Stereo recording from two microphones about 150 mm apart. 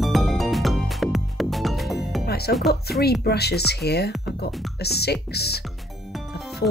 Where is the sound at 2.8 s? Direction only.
90° left.